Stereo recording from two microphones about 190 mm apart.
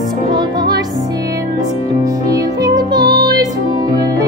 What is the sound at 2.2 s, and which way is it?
Music, 20° right (ahead or behind).